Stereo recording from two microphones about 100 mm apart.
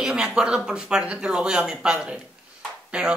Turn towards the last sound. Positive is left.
turn(degrees=-10)  # may be behind; listen again after turning